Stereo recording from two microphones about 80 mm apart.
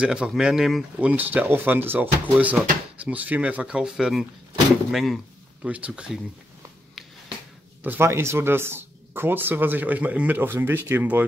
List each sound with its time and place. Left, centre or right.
0.0 s speech: centre
0.9 s speech: centre
5.6 s speech: centre
7.0 s a sound: centre
8.0 s speech: right